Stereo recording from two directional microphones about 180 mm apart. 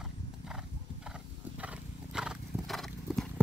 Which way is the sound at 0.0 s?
5° right (ahead or behind).